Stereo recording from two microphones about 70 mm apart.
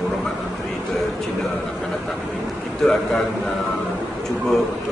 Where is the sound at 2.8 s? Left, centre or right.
Centre.